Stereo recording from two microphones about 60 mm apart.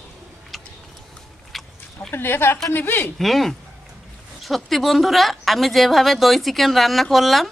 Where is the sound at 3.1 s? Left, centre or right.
Centre.